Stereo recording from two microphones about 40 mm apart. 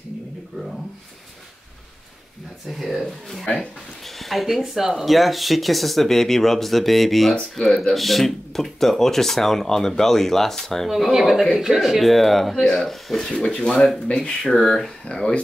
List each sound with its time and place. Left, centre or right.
2.7 s speech: centre
7.6 s speech: left
7.9 s speech: centre
10.9 s speech: centre
13.4 s speech: left
14.6 s speech: centre
15.0 s speech: left